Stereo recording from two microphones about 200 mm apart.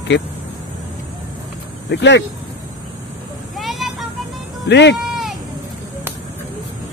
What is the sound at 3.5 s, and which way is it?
Vehicle, centre (ahead or behind).